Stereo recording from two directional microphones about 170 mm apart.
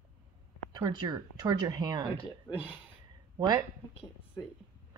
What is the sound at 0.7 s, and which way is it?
Speech, 25° right (ahead or behind).